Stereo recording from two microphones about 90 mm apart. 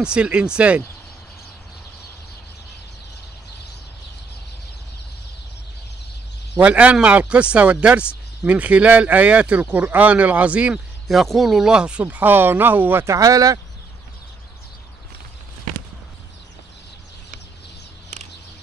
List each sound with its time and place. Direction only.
0.0 s speech: 10° right (ahead or behind)
6.6 s speech: 15° right (ahead or behind)
11.1 s speech: centre (ahead or behind); by 13.0 s 20° right (ahead or behind)
13.0 s speech: 40° right (ahead or behind)